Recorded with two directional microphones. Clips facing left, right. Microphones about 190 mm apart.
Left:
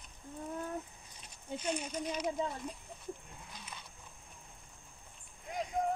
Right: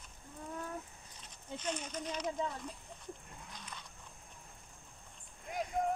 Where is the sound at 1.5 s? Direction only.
10° left (ahead or behind).